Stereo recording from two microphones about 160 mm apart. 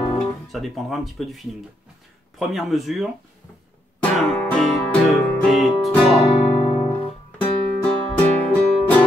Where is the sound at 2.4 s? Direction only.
Centre (ahead or behind).